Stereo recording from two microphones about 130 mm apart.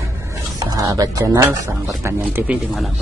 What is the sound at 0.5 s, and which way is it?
Speech, 25° right (ahead or behind).